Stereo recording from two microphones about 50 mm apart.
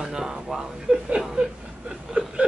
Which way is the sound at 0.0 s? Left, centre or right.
Centre.